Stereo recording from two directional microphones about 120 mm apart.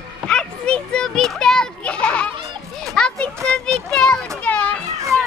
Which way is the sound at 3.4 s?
5° left (ahead or behind).